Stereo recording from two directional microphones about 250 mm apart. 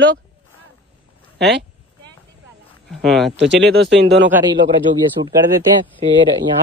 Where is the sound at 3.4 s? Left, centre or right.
Right.